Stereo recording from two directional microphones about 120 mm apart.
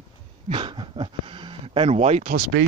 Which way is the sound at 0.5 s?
40° right (ahead or behind).